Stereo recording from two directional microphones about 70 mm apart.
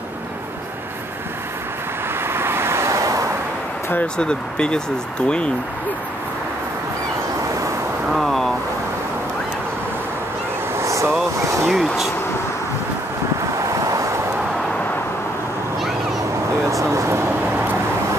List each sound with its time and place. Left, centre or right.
2.2 s vehicle: right
4.2 s speech: centre
8.1 s speech: centre
10.8 s a sound: right
11.6 s speech: centre
13.6 s vehicle: right
16.6 s a sound: right